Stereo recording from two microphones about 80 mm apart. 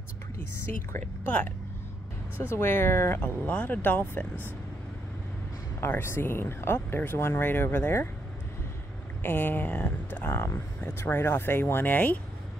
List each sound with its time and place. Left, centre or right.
0.9 s speech: left
2.5 s speech: left
3.2 s speech: centre
5.8 s speech: left
9.2 s speech: left
10.3 s speech: left